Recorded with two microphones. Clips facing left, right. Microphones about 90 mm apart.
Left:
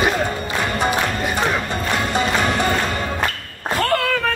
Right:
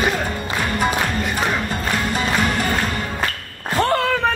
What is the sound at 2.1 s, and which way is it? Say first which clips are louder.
Music: left 2 dB; 20° left (ahead or behind).